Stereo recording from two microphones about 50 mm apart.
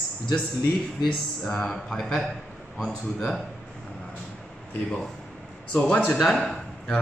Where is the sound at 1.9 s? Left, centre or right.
Centre.